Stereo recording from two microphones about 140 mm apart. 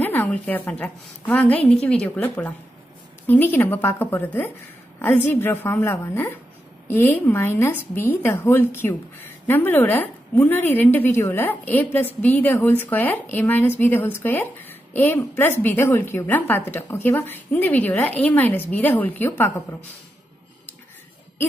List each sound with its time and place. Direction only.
0.0 s speech: 15° left (ahead or behind)